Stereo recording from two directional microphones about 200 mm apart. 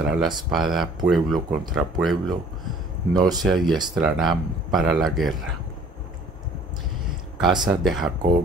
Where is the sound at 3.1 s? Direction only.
20° right (ahead or behind).